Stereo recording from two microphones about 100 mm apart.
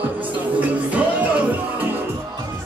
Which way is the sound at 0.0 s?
15° right (ahead or behind).